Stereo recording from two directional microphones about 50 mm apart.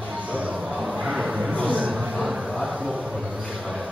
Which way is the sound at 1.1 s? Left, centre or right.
Centre.